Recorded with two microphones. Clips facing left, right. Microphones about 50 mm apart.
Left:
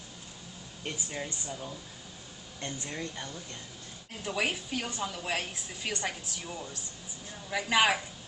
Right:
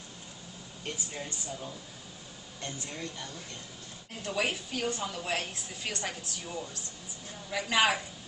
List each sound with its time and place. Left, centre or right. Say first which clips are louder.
0.8 s speech: left 2 dB; centre
2.6 s speech: left 2 dB; left
4.2 s a woman's voice: even; centre